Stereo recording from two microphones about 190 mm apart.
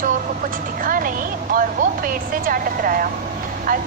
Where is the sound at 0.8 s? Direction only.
45° right (ahead or behind).